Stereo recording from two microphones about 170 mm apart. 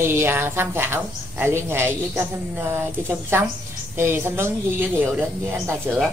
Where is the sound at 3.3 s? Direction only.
15° right (ahead or behind).